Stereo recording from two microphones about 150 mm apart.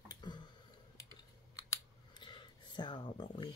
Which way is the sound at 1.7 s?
30° left (ahead or behind).